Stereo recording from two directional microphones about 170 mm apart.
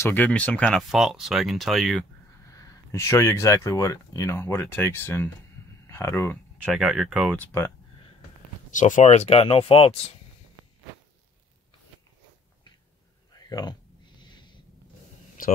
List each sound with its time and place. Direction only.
0.0 s speech: 10° left (ahead or behind)
2.5 s speech: 15° left (ahead or behind)
6.6 s speech: centre (ahead or behind)
7.3 s speech: 15° left (ahead or behind)
8.7 s speech: 45° left (ahead or behind)
13.3 s a sound: 25° left (ahead or behind)
15.4 s speech: 55° left (ahead or behind)